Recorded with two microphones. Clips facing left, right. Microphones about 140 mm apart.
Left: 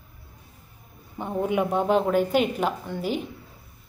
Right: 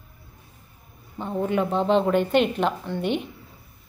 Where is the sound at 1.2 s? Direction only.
15° left (ahead or behind).